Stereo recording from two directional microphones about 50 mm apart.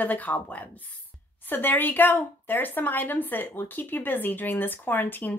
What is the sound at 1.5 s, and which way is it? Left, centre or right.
A woman's voice, left.